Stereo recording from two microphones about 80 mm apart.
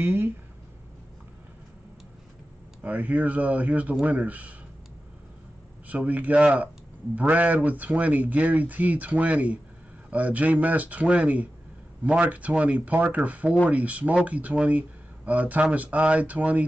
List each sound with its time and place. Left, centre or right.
0.0 s speech: right
2.8 s speech: centre
5.9 s speech: centre